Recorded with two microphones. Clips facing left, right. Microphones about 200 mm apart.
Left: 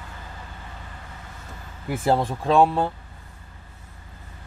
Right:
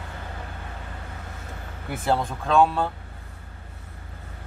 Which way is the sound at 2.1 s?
30° left (ahead or behind).